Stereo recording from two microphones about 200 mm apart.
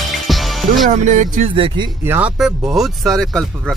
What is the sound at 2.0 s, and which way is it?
Speech, 10° right (ahead or behind).